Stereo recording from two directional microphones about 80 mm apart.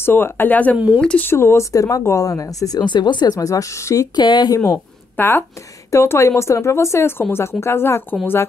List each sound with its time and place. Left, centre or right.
0.0 s speech: left
0.7 s speech: centre
1.2 s speech: left
1.7 s speech: left
3.3 s speech: left
4.1 s speech: left
5.1 s speech: left